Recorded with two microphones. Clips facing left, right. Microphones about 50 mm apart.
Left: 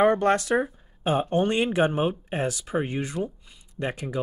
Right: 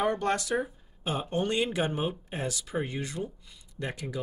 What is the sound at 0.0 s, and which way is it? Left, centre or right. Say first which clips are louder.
Speech: left 7 dB; left.